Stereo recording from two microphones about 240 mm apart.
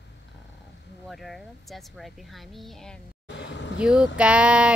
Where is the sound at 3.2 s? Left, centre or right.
Left.